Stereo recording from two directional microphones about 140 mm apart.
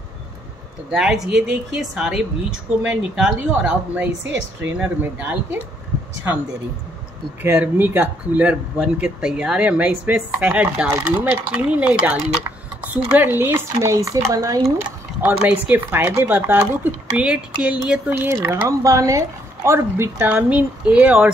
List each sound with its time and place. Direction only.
0.9 s speech: 5° right (ahead or behind)
7.4 s speech: 15° right (ahead or behind)
15.3 s speech: 10° right (ahead or behind)